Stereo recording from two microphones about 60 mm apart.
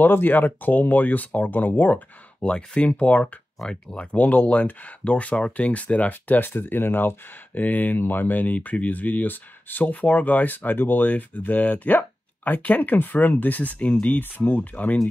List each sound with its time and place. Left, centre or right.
0.0 s speech: left
2.4 s speech: centre